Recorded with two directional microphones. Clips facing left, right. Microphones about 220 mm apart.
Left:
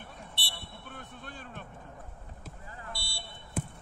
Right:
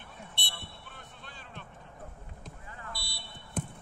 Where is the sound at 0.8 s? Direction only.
50° left (ahead or behind).